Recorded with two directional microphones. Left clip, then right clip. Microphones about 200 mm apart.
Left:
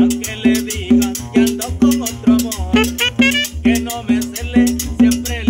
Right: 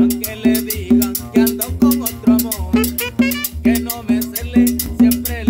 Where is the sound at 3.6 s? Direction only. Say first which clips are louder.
Left 1 dB; centre (ahead or behind).